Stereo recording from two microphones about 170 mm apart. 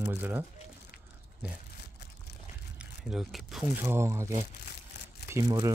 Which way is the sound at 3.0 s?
5° right (ahead or behind).